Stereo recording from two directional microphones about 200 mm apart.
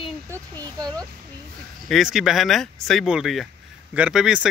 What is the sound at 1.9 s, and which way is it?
Speech, centre (ahead or behind).